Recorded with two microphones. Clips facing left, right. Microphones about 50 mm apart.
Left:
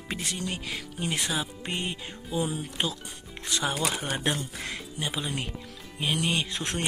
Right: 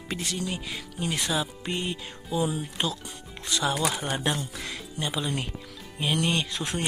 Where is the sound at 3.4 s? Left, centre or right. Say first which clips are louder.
Right 2 dB; left.